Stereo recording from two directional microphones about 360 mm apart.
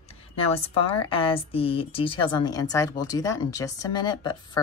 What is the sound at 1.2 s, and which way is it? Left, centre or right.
Speech, centre.